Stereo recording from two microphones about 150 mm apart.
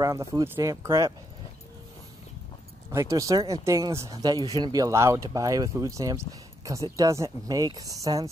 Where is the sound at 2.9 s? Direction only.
20° right (ahead or behind).